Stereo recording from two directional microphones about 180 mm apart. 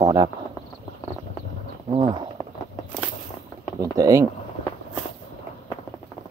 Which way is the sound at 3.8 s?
20° right (ahead or behind).